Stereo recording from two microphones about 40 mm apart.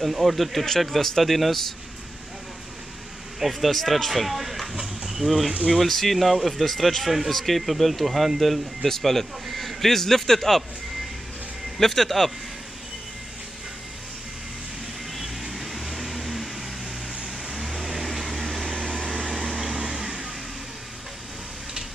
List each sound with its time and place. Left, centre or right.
0.0 s speech: centre
3.3 s speech: centre
11.8 s speech: centre
15.5 s vehicle: centre
17.5 s vehicle: centre
19.2 s vehicle: centre